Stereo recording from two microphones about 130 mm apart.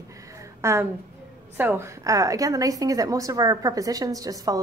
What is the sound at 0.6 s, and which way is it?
A woman's voice, 20° right (ahead or behind).